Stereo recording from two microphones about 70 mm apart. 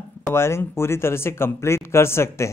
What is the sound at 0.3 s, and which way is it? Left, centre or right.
Speech, left.